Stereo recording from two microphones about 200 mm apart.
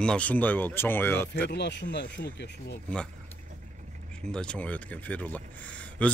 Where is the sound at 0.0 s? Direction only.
5° left (ahead or behind).